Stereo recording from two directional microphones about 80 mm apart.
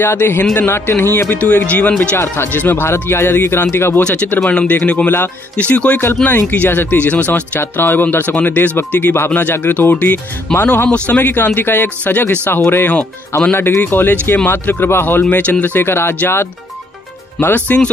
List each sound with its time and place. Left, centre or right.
0.0 s a man's voice: left
1.3 s speech: centre
2.1 s a man's voice: left
15.2 s speech: centre
17.4 s speech: left